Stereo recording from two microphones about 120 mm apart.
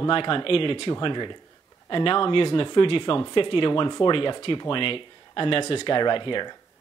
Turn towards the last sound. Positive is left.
turn(degrees=45)  # may be behind; listen again after turning